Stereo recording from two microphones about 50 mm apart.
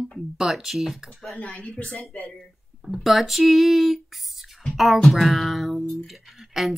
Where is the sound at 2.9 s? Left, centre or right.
Centre.